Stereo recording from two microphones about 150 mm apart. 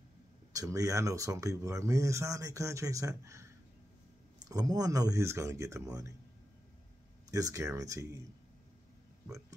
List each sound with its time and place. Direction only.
0.5 s speech: 25° right (ahead or behind)
7.2 s speech: 20° right (ahead or behind)